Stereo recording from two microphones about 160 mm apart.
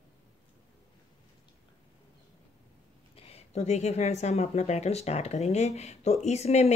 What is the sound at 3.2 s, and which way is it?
Speech, 40° left (ahead or behind).